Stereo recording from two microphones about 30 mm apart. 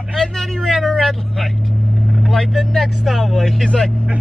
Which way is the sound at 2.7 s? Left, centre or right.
Centre.